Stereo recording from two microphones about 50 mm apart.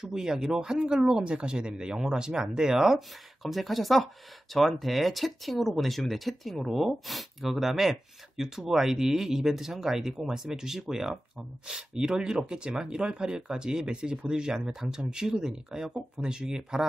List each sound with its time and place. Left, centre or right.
0.0 s speech: centre
3.4 s speech: centre